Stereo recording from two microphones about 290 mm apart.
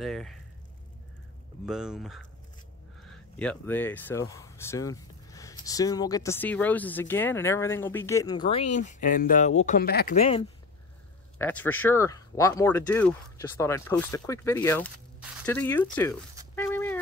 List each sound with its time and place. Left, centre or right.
0.0 s speech: centre
1.7 s speech: centre; by 10.4 s left
11.3 s speech: centre
16.5 s a sound: centre